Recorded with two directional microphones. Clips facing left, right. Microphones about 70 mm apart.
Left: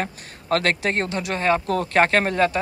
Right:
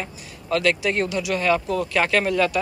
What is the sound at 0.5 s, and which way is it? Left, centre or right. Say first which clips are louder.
Speech: even; left.